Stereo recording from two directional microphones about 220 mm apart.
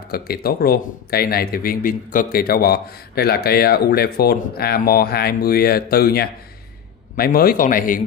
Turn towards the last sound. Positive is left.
turn(degrees=40)  # may be behind; listen again after turning